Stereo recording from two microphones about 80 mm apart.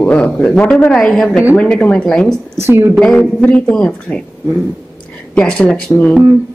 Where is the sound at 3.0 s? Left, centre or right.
Centre.